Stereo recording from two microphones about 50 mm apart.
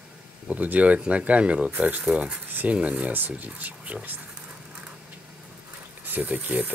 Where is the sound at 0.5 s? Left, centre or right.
Right.